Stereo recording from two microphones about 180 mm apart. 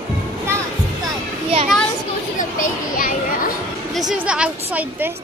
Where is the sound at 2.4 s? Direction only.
50° left (ahead or behind).